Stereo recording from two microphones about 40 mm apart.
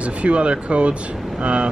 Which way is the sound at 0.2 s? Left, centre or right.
Right.